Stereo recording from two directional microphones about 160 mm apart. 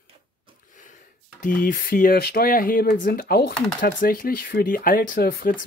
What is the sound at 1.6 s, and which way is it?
Speech, 60° left (ahead or behind).